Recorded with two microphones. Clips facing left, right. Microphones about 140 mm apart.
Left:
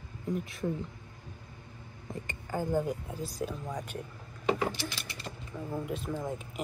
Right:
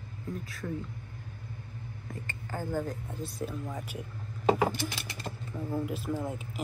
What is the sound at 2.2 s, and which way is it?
Speech, 15° left (ahead or behind).